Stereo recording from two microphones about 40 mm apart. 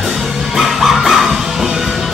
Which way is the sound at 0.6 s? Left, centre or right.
Centre.